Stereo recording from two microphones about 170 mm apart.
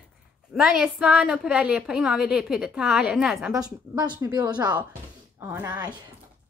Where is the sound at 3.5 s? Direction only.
20° right (ahead or behind).